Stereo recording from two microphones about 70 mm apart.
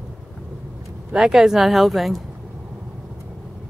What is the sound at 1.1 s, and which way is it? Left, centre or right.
Speech, centre.